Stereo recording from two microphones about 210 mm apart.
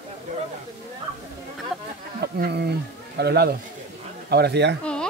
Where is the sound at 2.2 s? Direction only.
50° right (ahead or behind).